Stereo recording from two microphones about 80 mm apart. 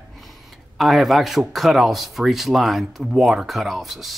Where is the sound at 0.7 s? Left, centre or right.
Centre.